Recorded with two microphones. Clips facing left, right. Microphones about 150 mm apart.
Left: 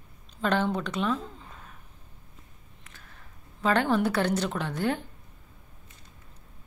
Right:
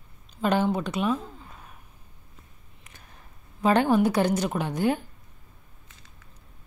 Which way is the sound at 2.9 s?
15° right (ahead or behind).